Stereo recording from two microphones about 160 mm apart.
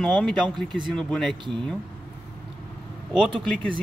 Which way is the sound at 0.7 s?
30° right (ahead or behind).